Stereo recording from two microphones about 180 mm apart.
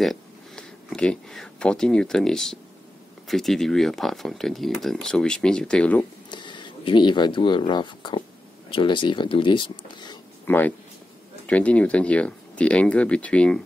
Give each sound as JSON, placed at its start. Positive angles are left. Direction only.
{"t": 0.0, "sound": "speech", "side_deg": 0}
{"t": 6.3, "sound": "speech", "side_deg": 25}
{"t": 10.4, "sound": "speech", "side_deg": 10}